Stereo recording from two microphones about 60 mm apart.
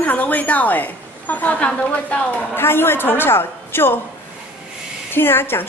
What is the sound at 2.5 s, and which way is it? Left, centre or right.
A woman's voice, left.